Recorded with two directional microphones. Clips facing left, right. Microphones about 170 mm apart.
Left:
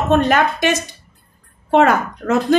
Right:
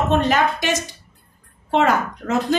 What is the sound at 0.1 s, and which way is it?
Speech, 55° left (ahead or behind).